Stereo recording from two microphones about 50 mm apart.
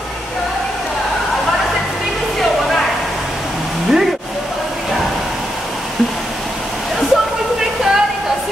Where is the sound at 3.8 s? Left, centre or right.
Centre.